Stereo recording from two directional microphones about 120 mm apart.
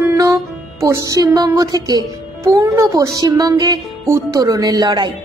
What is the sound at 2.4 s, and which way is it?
Speech, 20° right (ahead or behind).